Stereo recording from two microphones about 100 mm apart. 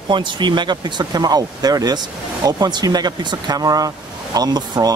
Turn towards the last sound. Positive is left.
turn(degrees=-40)  # may be behind; listen again after turning